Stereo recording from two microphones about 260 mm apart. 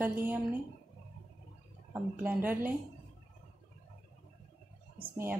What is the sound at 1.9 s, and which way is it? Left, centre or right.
Speech, centre.